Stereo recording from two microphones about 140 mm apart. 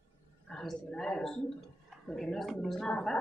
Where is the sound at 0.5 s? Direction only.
5° left (ahead or behind).